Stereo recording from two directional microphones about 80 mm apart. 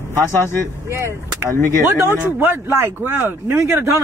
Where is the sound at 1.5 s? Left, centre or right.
Left.